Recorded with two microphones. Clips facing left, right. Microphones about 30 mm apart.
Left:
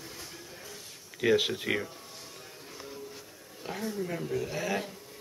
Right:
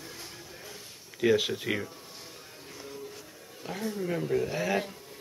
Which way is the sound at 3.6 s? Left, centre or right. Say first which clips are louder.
Right 1 dB; centre.